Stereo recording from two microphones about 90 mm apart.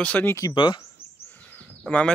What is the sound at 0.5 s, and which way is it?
Speech, 60° left (ahead or behind).